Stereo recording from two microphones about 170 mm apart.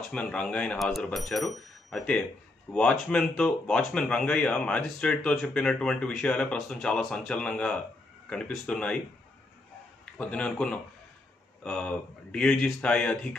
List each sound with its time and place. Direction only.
0.1 s speech: 5° left (ahead or behind)
10.1 s speech: 5° left (ahead or behind)